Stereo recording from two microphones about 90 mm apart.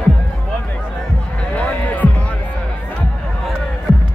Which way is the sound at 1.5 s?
15° left (ahead or behind).